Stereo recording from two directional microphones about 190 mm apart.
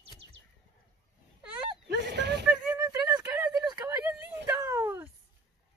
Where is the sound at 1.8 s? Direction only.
65° right (ahead or behind).